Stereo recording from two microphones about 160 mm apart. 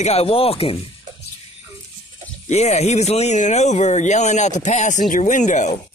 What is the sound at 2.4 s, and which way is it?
Speech, 45° left (ahead or behind).